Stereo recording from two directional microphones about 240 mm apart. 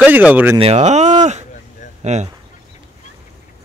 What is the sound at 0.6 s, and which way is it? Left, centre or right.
Speech, right.